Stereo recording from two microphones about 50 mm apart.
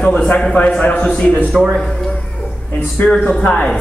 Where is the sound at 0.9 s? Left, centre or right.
Centre.